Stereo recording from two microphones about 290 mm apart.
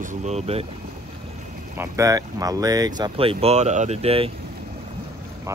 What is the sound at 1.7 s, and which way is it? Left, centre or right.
Speech, centre.